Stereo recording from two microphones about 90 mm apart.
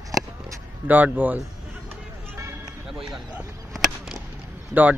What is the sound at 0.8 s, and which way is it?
Speech, 20° right (ahead or behind).